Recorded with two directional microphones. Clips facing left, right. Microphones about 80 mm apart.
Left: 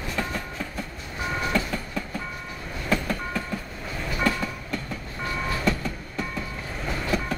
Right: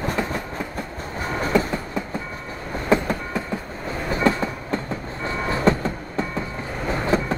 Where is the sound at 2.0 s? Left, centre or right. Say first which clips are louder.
Right 4 dB; right.